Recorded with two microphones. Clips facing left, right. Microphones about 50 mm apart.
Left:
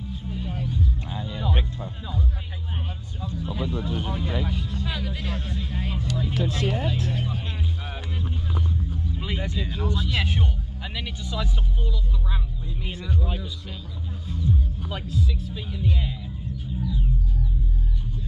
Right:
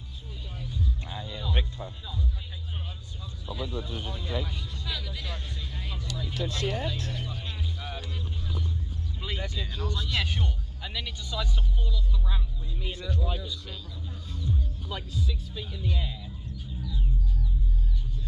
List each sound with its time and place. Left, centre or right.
0.1 s music: left
1.0 s music: left
3.2 s speech: left
7.2 s music: left
9.1 s speech: left
14.2 s music: centre
15.5 s music: left